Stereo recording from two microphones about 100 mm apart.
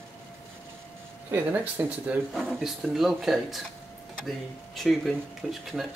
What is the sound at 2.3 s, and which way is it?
Speech, centre (ahead or behind).